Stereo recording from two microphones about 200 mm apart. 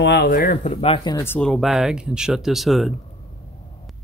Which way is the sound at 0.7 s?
30° left (ahead or behind).